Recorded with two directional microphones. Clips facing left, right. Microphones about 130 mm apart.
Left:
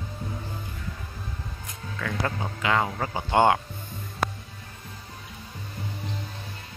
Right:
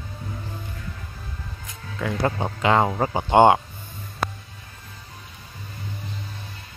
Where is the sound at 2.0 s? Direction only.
25° right (ahead or behind).